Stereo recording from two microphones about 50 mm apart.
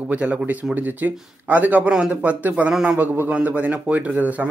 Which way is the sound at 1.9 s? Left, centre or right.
Centre.